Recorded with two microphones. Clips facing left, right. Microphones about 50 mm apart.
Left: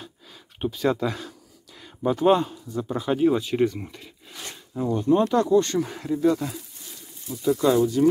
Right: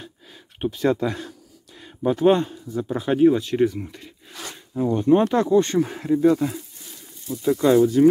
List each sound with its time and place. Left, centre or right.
0.6 s speech: centre
1.8 s a sound: centre
2.1 s speech: centre
3.3 s speech: centre
4.9 s speech: right
5.3 s speech: right
5.8 s speech: centre
7.4 s speech: right